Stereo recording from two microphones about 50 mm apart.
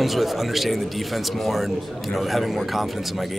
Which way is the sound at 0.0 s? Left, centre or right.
Centre.